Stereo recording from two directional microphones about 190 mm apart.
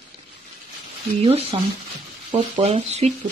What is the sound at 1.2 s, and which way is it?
Speech, 30° right (ahead or behind).